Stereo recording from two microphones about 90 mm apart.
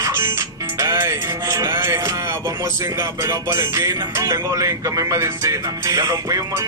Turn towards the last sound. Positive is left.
turn(degrees=-40)  # may be behind; listen again after turning